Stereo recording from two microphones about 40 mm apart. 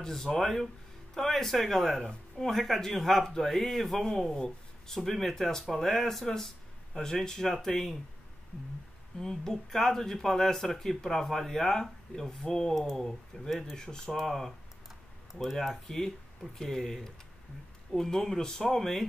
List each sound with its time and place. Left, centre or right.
0.0 s speech: centre
9.2 s speech: centre
13.5 s speech: centre
13.7 s speech: centre
15.6 s speech: centre